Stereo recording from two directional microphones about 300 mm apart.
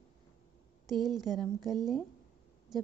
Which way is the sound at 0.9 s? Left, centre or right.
Centre.